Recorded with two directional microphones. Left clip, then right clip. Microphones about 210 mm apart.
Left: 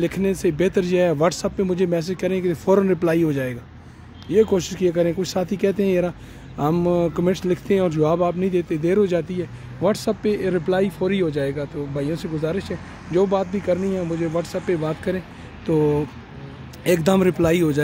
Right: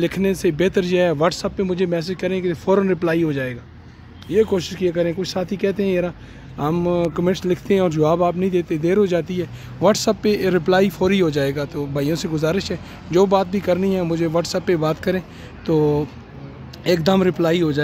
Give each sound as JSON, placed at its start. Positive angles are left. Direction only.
{"t": 0.0, "sound": "speech", "side_deg": 5}